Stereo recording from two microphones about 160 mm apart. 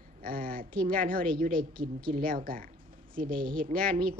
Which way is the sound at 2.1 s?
65° right (ahead or behind).